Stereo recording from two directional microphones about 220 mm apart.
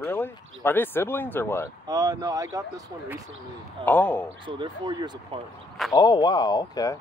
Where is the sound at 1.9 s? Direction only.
15° right (ahead or behind).